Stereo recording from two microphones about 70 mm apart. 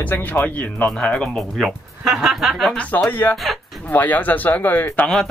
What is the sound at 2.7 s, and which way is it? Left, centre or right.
Speech, centre.